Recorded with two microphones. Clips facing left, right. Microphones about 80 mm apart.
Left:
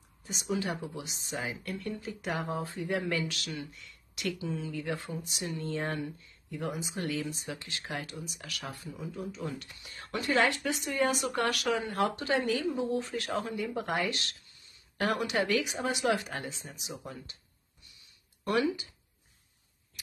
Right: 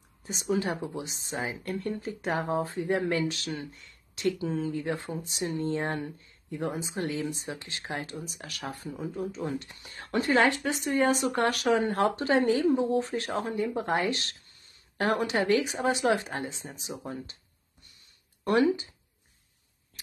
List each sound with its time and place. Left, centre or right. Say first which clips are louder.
0.2 s speech: right 4 dB; right
18.4 s speech: right 5 dB; right